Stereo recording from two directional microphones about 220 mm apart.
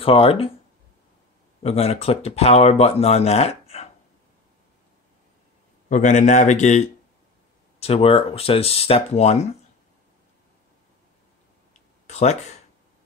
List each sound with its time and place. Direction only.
0.0 s speech: 25° left (ahead or behind)
1.6 s speech: 30° left (ahead or behind)
5.9 s a man's voice: 35° left (ahead or behind)
7.8 s speech: 25° left (ahead or behind)
11.7 s a sound: 30° left (ahead or behind)